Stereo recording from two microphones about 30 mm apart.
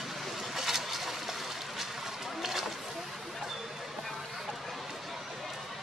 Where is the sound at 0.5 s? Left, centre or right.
Centre.